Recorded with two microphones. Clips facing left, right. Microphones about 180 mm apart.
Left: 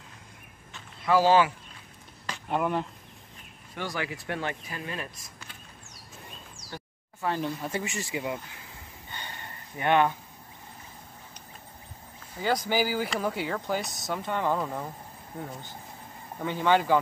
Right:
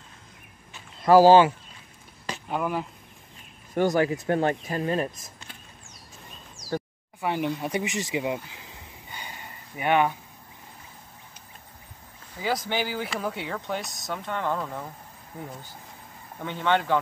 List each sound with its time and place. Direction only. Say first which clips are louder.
1.0 s speech: right 7 dB; 40° right (ahead or behind)
2.5 s speech: left 1 dB; 5° right (ahead or behind)
3.7 s speech: right 11 dB; 45° right (ahead or behind)
5.1 s speech: right 1 dB; 25° right (ahead or behind)
7.2 s speech: right 3 dB; 15° right (ahead or behind)
12.4 s speech: left 1 dB; centre (ahead or behind)
16.3 s speech: left 1 dB; 5° left (ahead or behind)